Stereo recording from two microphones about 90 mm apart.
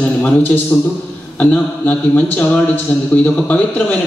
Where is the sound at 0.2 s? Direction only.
20° left (ahead or behind).